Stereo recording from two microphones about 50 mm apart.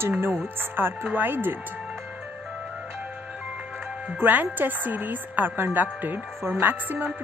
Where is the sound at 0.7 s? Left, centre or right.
Right.